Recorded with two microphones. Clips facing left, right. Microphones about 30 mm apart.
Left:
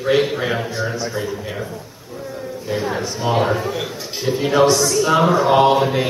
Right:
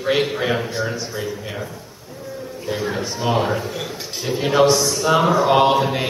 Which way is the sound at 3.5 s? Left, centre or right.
Centre.